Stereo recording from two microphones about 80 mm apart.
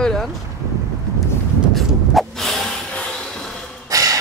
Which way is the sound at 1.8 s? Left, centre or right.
Centre.